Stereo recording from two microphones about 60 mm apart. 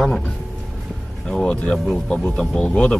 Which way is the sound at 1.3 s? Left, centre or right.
Centre.